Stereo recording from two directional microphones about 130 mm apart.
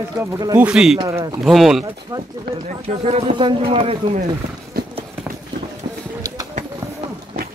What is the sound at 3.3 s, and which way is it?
Speech, 40° right (ahead or behind).